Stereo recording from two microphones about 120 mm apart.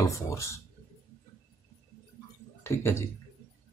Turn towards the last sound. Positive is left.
turn(degrees=20)  # may be behind; listen again after turning